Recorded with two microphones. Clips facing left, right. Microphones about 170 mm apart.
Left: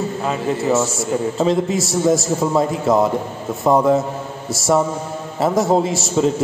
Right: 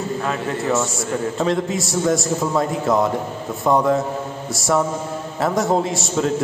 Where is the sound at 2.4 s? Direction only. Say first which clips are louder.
Left 4 dB; 20° left (ahead or behind).